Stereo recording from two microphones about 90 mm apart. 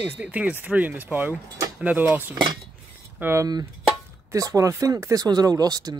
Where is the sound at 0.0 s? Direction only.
15° right (ahead or behind).